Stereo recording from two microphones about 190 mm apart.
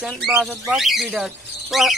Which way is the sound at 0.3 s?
Centre (ahead or behind).